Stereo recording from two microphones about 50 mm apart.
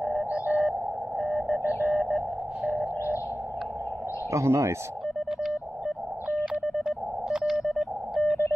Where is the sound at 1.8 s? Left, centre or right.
Centre.